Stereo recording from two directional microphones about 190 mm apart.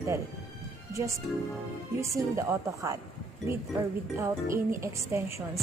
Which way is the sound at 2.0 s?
15° right (ahead or behind).